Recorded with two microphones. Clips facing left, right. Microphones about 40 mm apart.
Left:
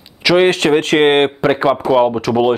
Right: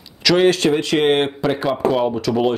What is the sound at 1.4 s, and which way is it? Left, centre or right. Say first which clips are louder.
Speech: left 5 dB; left.